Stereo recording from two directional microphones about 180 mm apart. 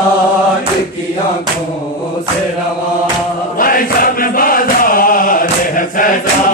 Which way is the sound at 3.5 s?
50° left (ahead or behind).